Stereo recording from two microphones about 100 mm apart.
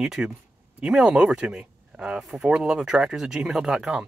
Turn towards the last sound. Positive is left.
turn(degrees=-5)  # may be behind; listen again after turning